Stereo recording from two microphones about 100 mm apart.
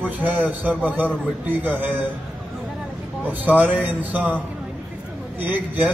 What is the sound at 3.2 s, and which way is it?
A man's voice, 20° right (ahead or behind).